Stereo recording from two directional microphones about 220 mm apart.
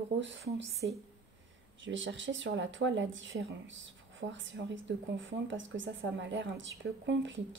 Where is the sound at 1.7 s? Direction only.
60° right (ahead or behind).